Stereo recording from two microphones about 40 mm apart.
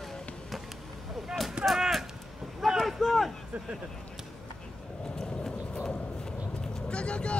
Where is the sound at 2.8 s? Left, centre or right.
Centre.